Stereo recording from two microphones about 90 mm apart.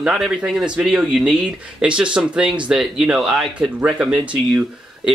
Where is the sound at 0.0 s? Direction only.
10° right (ahead or behind).